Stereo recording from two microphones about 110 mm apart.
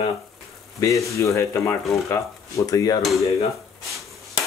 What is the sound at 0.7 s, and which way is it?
Speech, 30° left (ahead or behind).